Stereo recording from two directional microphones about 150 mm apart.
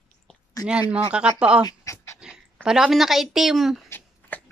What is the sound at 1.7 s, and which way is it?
Dog, 20° left (ahead or behind).